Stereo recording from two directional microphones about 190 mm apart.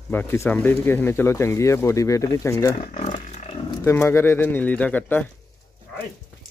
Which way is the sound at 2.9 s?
35° left (ahead or behind).